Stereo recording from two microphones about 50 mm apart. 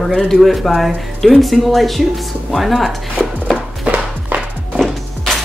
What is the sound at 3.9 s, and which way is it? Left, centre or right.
Music, right.